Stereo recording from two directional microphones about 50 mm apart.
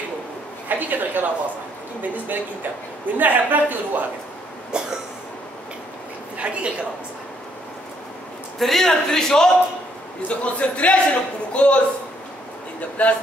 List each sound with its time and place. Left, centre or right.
0.7 s a man's voice: right
4.7 s cough: centre
6.3 s a woman's voice: right
8.5 s a man's voice: centre
10.2 s a man's voice: left
13.0 s a man's voice: left